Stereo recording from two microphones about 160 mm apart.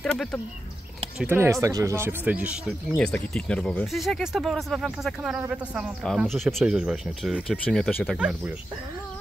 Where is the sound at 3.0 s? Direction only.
5° left (ahead or behind).